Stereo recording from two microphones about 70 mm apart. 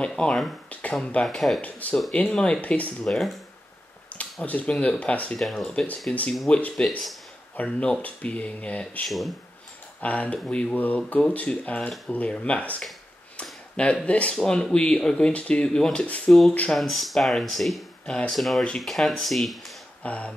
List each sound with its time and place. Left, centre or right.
0.0 s speech: centre
1.2 s speech: centre
1.6 s speech: left
3.0 s speech: centre
4.1 s speech: left
5.4 s speech: centre
6.1 s speech: centre
9.0 s speech: centre
10.0 s speech: centre
13.4 s a sound: centre
14.0 s speech: centre
16.3 s speech: centre
20.0 s speech: centre